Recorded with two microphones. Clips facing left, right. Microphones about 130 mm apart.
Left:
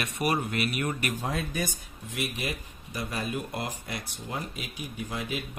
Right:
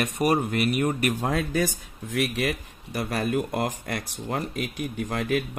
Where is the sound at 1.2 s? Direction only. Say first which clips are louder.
Right 6 dB; 90° right.